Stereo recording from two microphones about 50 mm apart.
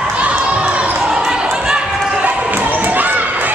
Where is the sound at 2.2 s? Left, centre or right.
Right.